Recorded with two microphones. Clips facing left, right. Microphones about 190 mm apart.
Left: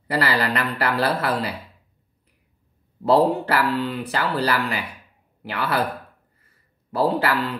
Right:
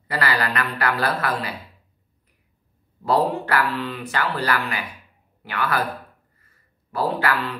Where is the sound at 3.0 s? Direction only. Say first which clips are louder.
Left 3 dB; 30° left (ahead or behind).